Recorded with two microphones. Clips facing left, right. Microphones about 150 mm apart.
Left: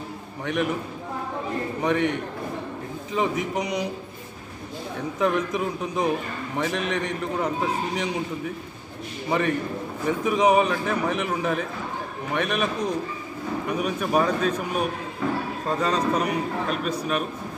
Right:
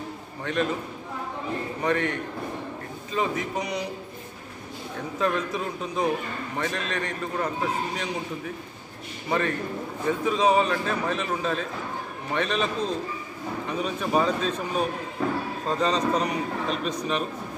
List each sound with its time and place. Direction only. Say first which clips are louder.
0.5 s a man's voice: left 1 dB; 15° left (ahead or behind)
1.8 s a man's voice: left 3 dB; 15° left (ahead or behind)
5.2 s a man's voice: left 3 dB; 15° left (ahead or behind)
10.0 s a man's voice: left 2 dB; 15° left (ahead or behind)
15.8 s a man's voice: even; 10° left (ahead or behind)